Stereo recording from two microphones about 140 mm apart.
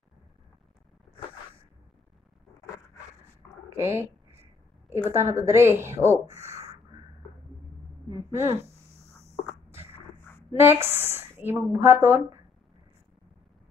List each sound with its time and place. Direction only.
3.7 s speech: 20° right (ahead or behind)
5.1 s a woman's voice: 20° right (ahead or behind)
8.1 s a woman's voice: 20° right (ahead or behind)
10.5 s a woman's voice: 15° right (ahead or behind)